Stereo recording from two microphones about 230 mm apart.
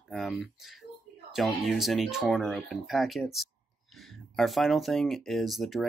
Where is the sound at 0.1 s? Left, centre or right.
Centre.